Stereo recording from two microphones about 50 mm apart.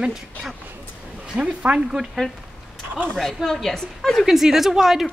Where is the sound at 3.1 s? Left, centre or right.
Centre.